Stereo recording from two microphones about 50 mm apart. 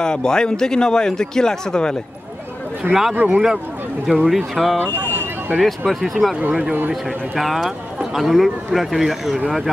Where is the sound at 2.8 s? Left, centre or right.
Right.